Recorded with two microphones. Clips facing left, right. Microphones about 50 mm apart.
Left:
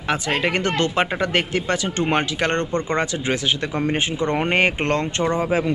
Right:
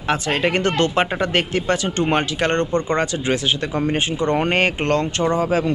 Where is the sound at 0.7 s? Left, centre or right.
Right.